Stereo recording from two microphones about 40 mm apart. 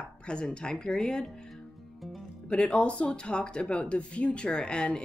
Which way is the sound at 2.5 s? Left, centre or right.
Left.